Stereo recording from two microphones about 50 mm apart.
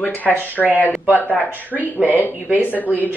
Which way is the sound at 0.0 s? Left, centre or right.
Left.